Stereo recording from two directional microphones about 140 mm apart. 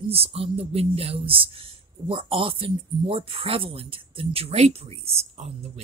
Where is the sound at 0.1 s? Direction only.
45° right (ahead or behind).